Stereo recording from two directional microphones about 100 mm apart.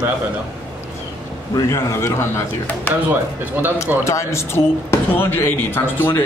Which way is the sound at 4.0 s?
30° left (ahead or behind).